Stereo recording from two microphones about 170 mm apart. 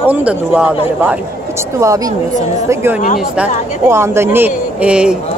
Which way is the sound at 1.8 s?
20° right (ahead or behind).